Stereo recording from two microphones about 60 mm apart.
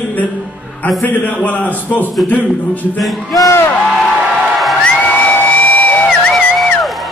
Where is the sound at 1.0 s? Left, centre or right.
Left.